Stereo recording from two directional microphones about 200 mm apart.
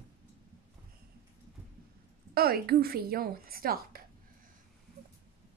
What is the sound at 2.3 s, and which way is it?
A woman's voice, 50° right (ahead or behind).